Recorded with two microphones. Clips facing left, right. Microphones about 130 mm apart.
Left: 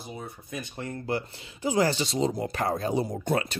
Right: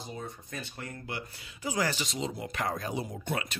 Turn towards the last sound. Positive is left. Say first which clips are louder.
# left 7 dB
turn(degrees=35)  # may be behind; listen again after turning